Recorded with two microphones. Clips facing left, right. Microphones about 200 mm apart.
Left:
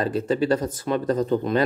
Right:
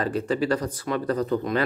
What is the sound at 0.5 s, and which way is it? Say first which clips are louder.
Speech: left 3 dB; 25° left (ahead or behind).